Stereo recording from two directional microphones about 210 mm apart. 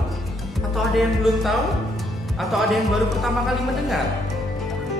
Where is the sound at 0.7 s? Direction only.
Centre (ahead or behind).